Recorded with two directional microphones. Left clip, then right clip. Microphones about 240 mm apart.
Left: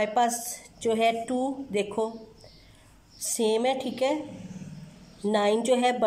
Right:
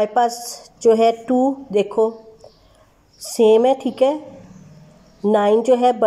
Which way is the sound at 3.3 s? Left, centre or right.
Centre.